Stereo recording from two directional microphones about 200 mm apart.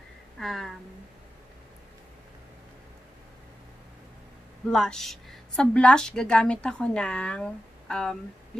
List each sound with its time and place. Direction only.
0.4 s a woman's voice: centre (ahead or behind)
4.6 s a woman's voice: 5° left (ahead or behind)